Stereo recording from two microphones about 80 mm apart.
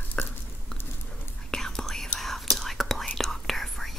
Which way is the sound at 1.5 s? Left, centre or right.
Centre.